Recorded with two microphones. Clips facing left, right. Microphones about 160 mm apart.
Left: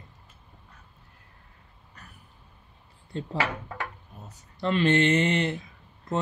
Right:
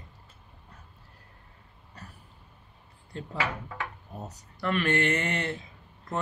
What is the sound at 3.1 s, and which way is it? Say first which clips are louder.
Speech: left 5 dB; 25° left (ahead or behind).